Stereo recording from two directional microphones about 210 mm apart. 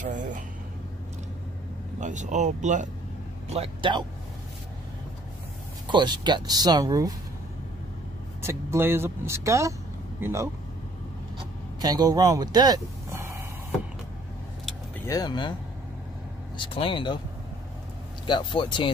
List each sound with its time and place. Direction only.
2.0 s speech: 35° right (ahead or behind)
5.9 s speech: 20° right (ahead or behind)
8.4 s speech: 10° right (ahead or behind)
11.3 s vehicle: 20° right (ahead or behind)
15.0 s speech: 20° left (ahead or behind)
16.5 s speech: 25° left (ahead or behind)
18.2 s speech: 25° left (ahead or behind)